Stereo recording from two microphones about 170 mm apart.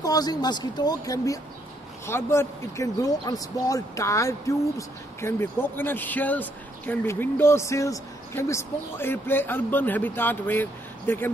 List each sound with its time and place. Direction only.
0.0 s speech: 20° left (ahead or behind)